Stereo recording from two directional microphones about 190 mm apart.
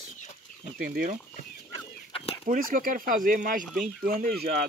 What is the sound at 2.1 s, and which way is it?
Chicken, 30° left (ahead or behind).